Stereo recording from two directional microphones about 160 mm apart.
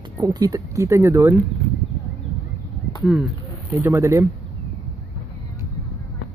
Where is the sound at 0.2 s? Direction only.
25° right (ahead or behind).